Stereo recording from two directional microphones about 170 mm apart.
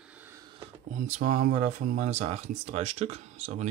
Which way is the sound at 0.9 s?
50° right (ahead or behind).